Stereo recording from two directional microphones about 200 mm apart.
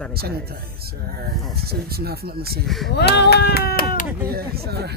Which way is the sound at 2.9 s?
55° left (ahead or behind).